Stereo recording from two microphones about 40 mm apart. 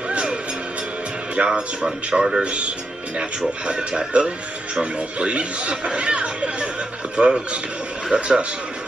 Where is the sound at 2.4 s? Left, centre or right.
Right.